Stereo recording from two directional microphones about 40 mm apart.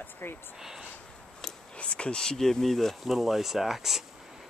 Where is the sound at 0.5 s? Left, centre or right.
Centre.